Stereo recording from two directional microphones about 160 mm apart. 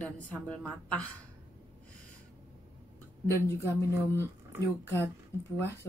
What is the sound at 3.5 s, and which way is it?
A woman's voice, 15° left (ahead or behind).